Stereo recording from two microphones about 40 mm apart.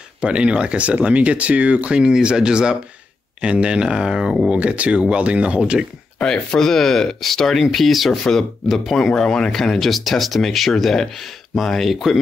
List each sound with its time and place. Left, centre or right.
0.2 s speech: right
4.5 s speech: right
6.2 s speech: centre
8.2 s speech: centre
11.9 s speech: centre